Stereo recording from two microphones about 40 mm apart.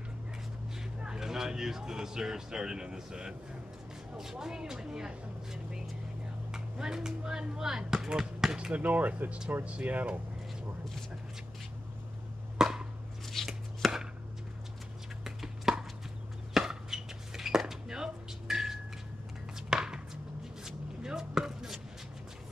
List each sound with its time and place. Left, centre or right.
1.0 s speech: centre
6.5 s a sound: centre
7.2 s speech: centre
8.7 s speech: right
12.5 s a sound: centre
13.5 s chopping: centre
15.2 s chopping: centre
16.5 s walk: centre
17.8 s music: centre
19.7 s chopping: centre